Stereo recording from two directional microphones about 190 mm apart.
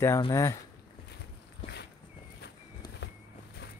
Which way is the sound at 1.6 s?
30° left (ahead or behind).